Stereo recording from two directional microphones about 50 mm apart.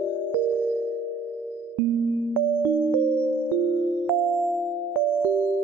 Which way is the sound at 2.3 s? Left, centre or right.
Left.